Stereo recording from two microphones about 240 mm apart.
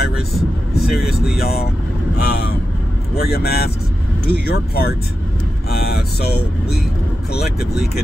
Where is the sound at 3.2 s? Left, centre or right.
Left.